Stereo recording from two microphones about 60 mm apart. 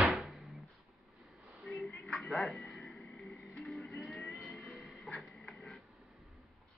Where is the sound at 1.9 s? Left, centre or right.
Centre.